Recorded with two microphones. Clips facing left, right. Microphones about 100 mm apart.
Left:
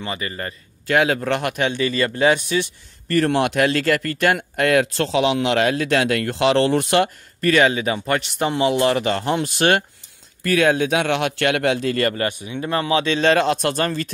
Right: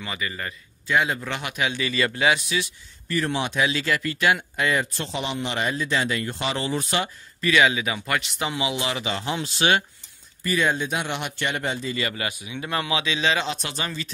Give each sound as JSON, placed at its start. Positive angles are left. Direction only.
{"t": 0.0, "sound": "a man's voice", "side_deg": 40}
{"t": 0.8, "sound": "speech", "side_deg": 70}
{"t": 3.1, "sound": "speech", "side_deg": 60}
{"t": 10.4, "sound": "speech", "side_deg": 70}
{"t": 12.5, "sound": "speech", "side_deg": 35}